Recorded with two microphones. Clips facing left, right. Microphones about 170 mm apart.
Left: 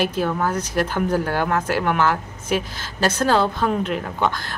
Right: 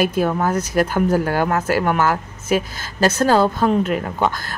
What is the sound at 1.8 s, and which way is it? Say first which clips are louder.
Speech: right 2 dB; 45° right (ahead or behind).